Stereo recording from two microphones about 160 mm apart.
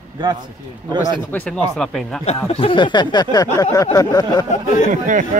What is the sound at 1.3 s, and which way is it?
Speech, 5° left (ahead or behind).